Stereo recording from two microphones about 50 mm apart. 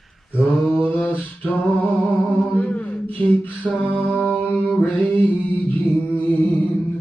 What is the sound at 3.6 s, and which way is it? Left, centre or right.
Mantra, left.